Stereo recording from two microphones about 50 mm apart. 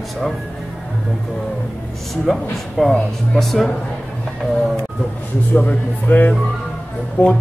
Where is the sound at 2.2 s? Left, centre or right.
Centre.